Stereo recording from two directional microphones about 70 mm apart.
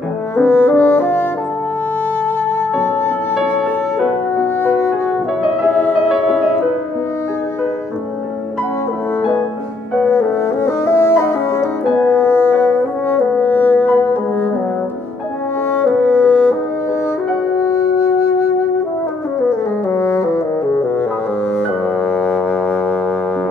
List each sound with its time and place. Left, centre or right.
0.4 s music: left
10.0 s music: left
15.7 s music: left
17.6 s music: left
19.9 s brass instrument: left
22.2 s music: centre